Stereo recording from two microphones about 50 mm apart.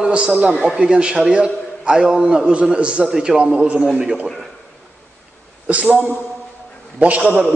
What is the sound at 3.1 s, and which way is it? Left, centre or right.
Speech, centre.